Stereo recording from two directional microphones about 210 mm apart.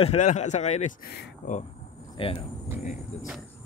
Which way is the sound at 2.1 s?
25° left (ahead or behind).